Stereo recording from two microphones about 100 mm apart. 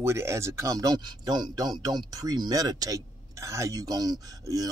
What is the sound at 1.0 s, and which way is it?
Speech, 45° right (ahead or behind).